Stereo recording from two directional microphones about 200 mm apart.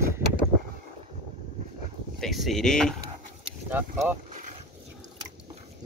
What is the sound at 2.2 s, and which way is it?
Speech, centre (ahead or behind).